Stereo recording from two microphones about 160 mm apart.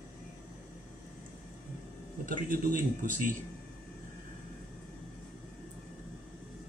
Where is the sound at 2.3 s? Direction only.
60° right (ahead or behind).